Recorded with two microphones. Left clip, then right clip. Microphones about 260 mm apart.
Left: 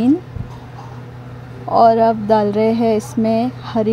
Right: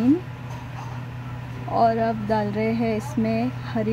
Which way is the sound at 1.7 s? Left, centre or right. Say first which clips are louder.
Left 9 dB; centre.